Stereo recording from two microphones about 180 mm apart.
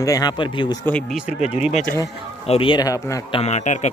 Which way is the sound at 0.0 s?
20° left (ahead or behind).